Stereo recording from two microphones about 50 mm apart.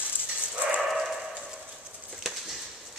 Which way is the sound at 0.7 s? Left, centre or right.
Centre.